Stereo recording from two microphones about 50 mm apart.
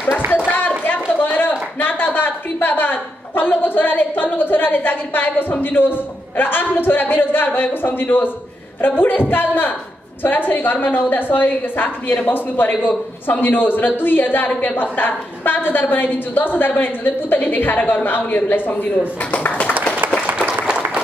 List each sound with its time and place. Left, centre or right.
0.6 s a sound: left
8.8 s a woman's voice: left
19.4 s clapping: left
20.4 s applause: right